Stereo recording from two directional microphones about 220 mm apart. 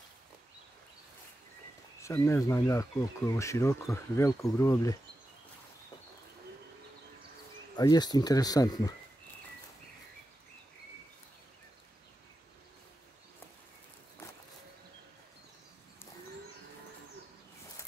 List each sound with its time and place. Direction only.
2.0 s speech: 15° left (ahead or behind)
7.7 s speech: 20° left (ahead or behind)